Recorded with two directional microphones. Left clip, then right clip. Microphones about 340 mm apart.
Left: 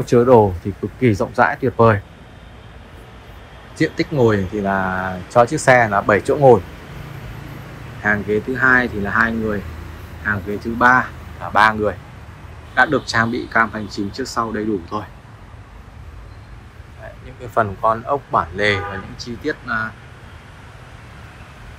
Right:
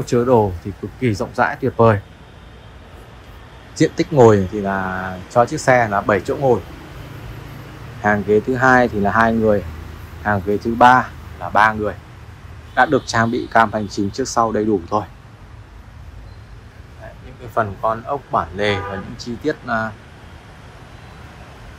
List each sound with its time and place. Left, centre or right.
0.0 s speech: centre
3.7 s speech: centre
8.0 s speech: centre
17.6 s speech: centre